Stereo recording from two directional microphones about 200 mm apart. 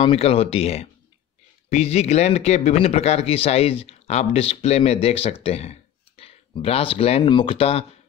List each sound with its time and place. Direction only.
0.0 s speech: 30° left (ahead or behind)